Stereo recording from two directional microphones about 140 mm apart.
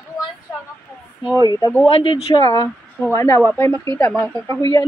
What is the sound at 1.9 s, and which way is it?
Speech, 40° left (ahead or behind).